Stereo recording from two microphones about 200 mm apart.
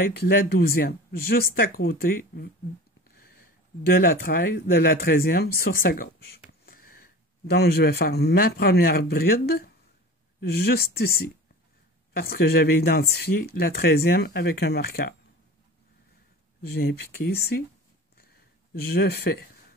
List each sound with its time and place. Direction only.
0.0 s speech: 50° left (ahead or behind)
16.6 s speech: 50° left (ahead or behind)
18.8 s speech: 50° left (ahead or behind)